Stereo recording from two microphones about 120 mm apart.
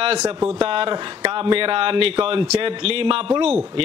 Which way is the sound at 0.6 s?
50° right (ahead or behind).